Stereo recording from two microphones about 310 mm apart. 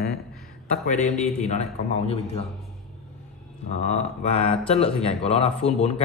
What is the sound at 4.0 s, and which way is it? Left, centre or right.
A man's voice, left.